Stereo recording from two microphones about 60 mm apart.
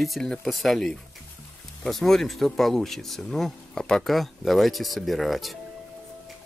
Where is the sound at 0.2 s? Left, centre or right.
Centre.